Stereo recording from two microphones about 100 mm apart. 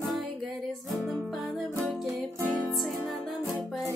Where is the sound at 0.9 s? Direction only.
Centre (ahead or behind).